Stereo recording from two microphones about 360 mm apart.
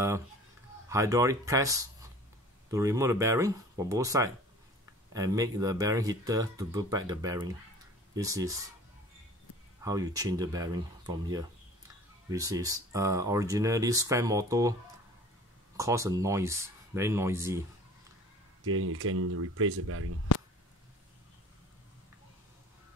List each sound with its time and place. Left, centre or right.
0.8 s speech: centre
9.8 s speech: centre
18.7 s speech: right